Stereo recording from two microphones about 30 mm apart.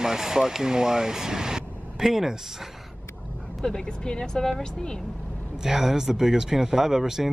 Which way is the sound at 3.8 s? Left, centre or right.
Left.